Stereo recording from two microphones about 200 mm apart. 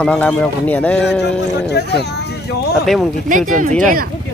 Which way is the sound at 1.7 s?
55° left (ahead or behind).